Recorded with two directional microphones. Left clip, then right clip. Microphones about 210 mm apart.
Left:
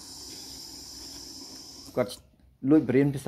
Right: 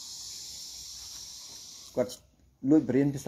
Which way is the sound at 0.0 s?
40° right (ahead or behind).